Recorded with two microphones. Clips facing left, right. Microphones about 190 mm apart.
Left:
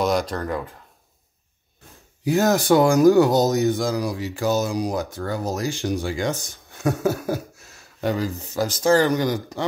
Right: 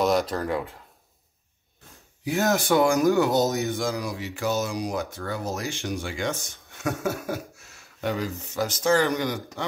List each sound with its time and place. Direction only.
0.0 s speech: centre (ahead or behind)
2.2 s speech: 40° left (ahead or behind)